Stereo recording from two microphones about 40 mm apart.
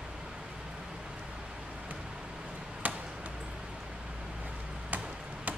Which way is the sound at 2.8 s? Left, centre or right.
Right.